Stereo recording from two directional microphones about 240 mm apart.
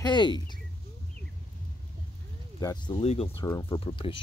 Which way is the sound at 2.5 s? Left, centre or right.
Centre.